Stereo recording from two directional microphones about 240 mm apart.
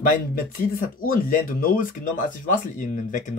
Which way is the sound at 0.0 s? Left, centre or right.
Left.